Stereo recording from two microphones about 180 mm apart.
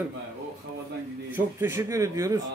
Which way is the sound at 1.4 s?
15° right (ahead or behind).